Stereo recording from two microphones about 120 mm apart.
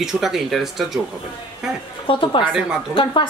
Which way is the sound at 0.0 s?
5° right (ahead or behind).